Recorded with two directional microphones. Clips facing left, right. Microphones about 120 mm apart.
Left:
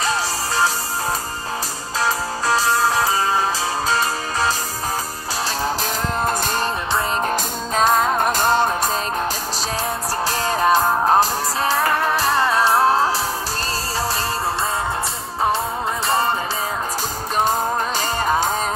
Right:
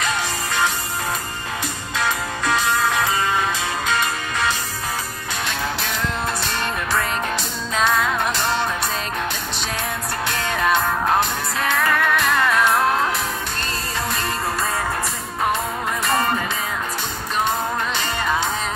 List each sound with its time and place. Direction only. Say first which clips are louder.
0.0 s music: left 2 dB; 35° left (ahead or behind)
2.0 s music: left 2 dB; 35° left (ahead or behind)
6.2 s music: left 4 dB; 45° left (ahead or behind)
6.9 s music: left 2 dB; 30° left (ahead or behind)
7.7 s music: left 3 dB; 40° left (ahead or behind)
10.2 s music: left 3 dB; 35° left (ahead or behind)
16.1 s music: left 1 dB; 30° left (ahead or behind)
17.5 s music: left 2 dB; 40° left (ahead or behind)